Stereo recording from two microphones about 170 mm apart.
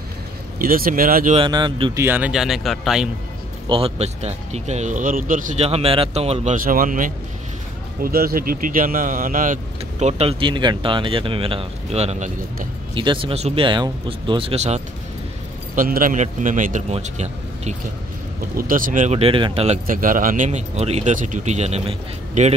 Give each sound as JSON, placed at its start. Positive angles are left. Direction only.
{"t": 0.6, "sound": "speech", "side_deg": -60}
{"t": 1.3, "sound": "speech", "side_deg": -30}
{"t": 2.0, "sound": "speech", "side_deg": -10}
{"t": 3.6, "sound": "speech", "side_deg": -35}
{"t": 5.7, "sound": "speech", "side_deg": -35}
{"t": 15.7, "sound": "speech", "side_deg": -55}
{"t": 18.6, "sound": "speech", "side_deg": -55}
{"t": 19.9, "sound": "speech", "side_deg": -55}